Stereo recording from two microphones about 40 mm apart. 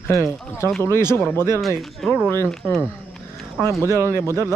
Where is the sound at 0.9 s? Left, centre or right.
Left.